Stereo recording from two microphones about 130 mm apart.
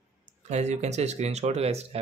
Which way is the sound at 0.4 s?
60° right (ahead or behind).